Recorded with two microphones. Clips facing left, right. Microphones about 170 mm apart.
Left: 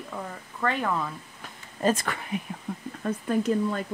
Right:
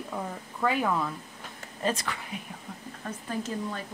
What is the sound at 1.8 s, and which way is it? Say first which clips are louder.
Speech: left 5 dB; 50° left (ahead or behind).